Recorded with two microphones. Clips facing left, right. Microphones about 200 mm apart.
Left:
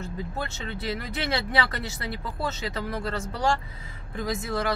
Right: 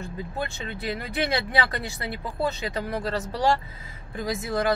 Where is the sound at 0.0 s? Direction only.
15° right (ahead or behind).